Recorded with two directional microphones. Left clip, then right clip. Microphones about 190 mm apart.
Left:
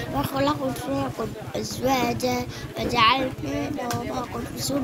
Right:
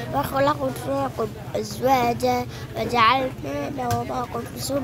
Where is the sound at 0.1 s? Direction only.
20° right (ahead or behind).